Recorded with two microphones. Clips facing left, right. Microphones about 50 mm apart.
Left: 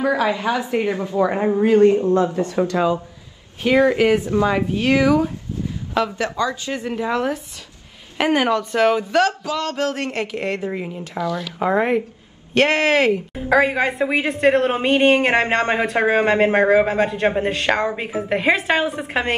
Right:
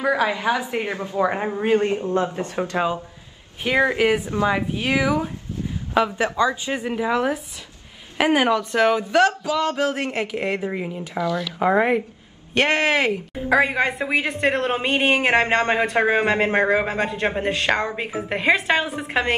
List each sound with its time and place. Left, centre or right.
0.0 s speech: centre
1.6 s speech: right
4.5 s speech: centre
6.9 s speech: centre
11.1 s speech: right
11.6 s a woman's voice: centre